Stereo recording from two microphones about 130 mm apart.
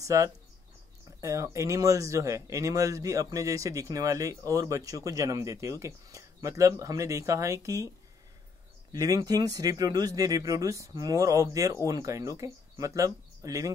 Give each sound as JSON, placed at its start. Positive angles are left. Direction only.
{"t": 0.0, "sound": "speech", "side_deg": -25}
{"t": 8.9, "sound": "speech", "side_deg": -30}